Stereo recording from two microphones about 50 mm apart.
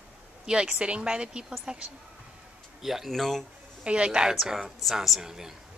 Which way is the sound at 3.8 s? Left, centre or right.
Right.